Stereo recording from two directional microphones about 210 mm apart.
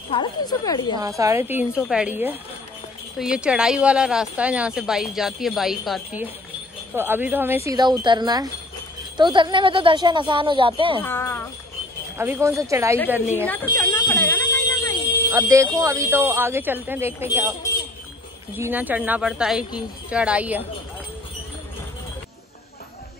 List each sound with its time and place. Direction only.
0.1 s speech: 20° left (ahead or behind)
0.9 s speech: 15° right (ahead or behind)
11.0 s speech: 10° left (ahead or behind)
12.2 s speech: 10° right (ahead or behind)
13.5 s speech: 10° left (ahead or behind)
14.0 s fire alarm: 10° left (ahead or behind)
15.3 s speech: 15° right (ahead or behind)
18.5 s speech: 10° right (ahead or behind)